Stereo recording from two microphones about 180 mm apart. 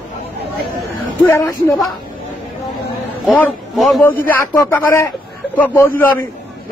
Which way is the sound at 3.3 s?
Centre (ahead or behind).